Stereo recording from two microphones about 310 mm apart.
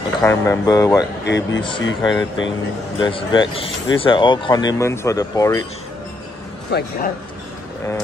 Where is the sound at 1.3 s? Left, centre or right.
Left.